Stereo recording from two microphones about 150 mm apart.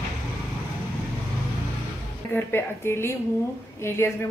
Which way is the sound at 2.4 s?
15° left (ahead or behind).